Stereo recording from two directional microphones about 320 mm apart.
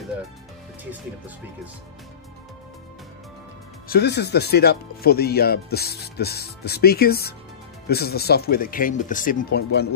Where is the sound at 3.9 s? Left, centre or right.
Left.